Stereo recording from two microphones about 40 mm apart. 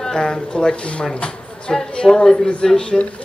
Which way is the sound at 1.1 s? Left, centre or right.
Left.